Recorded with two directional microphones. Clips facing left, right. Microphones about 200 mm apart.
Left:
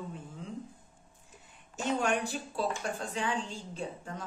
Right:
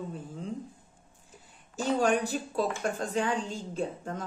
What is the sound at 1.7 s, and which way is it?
A woman's voice, 35° right (ahead or behind).